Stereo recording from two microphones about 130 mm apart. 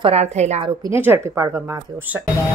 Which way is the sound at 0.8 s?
20° right (ahead or behind).